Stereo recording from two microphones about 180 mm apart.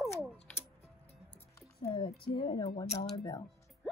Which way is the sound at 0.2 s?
10° left (ahead or behind).